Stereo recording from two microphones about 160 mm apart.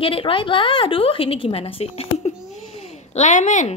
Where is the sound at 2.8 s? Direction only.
45° left (ahead or behind).